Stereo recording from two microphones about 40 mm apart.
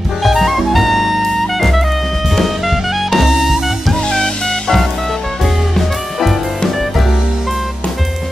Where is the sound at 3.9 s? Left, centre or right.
Centre.